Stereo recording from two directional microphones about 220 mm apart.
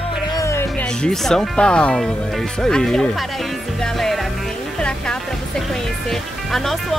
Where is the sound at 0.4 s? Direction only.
10° left (ahead or behind).